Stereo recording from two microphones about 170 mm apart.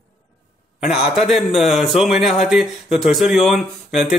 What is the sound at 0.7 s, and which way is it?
A man's voice, 5° right (ahead or behind).